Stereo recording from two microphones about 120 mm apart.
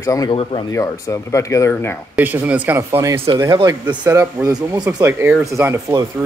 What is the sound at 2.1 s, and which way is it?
Speech, 15° right (ahead or behind).